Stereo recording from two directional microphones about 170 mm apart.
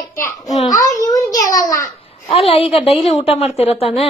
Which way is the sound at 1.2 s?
20° left (ahead or behind).